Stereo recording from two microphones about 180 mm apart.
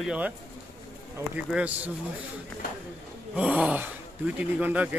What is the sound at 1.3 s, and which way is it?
Speech, 5° right (ahead or behind).